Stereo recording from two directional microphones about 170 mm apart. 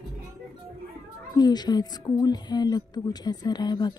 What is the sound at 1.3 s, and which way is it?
Speech, 25° left (ahead or behind).